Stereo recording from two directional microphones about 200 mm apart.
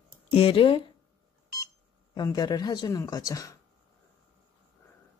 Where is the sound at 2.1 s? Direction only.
20° left (ahead or behind).